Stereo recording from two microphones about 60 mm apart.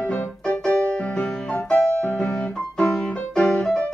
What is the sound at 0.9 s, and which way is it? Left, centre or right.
Music, centre.